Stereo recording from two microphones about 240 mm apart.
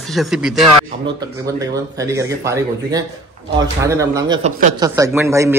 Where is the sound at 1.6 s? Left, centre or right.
Centre.